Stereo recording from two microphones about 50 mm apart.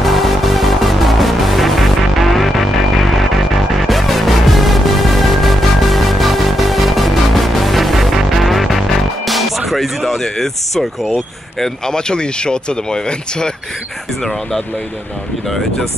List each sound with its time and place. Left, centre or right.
0.0 s music: centre
11.1 s speech: centre